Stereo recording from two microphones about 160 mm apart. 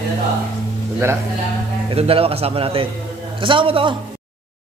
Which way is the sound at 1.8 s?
35° right (ahead or behind).